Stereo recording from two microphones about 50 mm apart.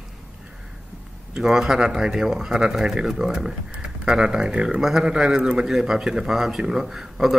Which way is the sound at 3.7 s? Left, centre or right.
Right.